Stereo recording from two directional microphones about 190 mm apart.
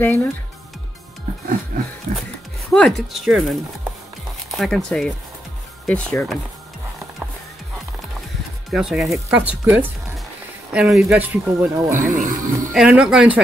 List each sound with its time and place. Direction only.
0.0 s speech: 10° left (ahead or behind)
2.7 s speech: 5° left (ahead or behind)
8.6 s speech: centre (ahead or behind)
12.0 s speech: 45° right (ahead or behind)
12.7 s speech: 5° right (ahead or behind)